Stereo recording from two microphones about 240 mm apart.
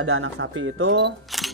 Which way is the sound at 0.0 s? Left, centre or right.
Right.